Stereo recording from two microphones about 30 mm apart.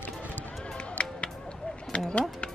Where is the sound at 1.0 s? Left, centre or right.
Left.